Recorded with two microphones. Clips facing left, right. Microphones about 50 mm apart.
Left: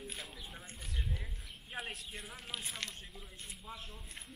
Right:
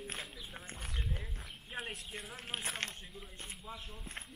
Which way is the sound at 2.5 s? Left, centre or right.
Right.